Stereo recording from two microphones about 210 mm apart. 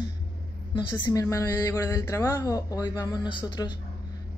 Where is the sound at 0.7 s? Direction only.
20° left (ahead or behind).